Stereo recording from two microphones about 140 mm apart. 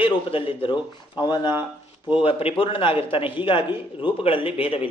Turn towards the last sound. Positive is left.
turn(degrees=40)  # may be behind; listen again after turning